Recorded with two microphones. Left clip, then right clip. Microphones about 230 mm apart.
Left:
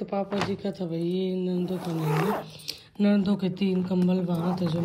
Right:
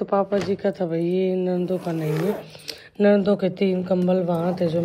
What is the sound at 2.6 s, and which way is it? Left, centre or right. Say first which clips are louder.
Speech: right 12 dB; centre.